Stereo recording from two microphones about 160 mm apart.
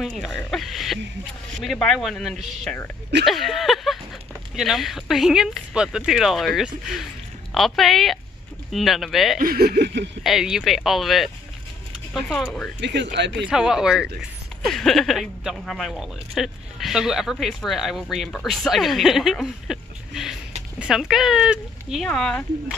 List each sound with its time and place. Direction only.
0.0 s speech: centre (ahead or behind)
0.5 s a sound: centre (ahead or behind)
1.6 s speech: 5° left (ahead or behind)
3.3 s a sound: centre (ahead or behind)
4.6 s speech: centre (ahead or behind)
9.4 s speech: 70° right (ahead or behind)
10.2 s speech: centre (ahead or behind)
12.8 s speech: 90° right
13.5 s speech: 5° right (ahead or behind)